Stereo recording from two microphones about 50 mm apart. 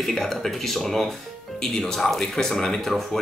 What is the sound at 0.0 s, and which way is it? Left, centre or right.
Speech, centre.